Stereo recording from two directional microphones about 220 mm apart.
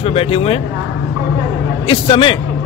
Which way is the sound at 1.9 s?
20° left (ahead or behind).